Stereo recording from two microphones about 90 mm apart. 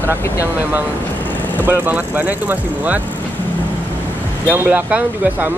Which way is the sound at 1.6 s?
20° right (ahead or behind).